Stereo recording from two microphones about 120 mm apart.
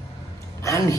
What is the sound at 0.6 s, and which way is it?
Speech, 25° left (ahead or behind).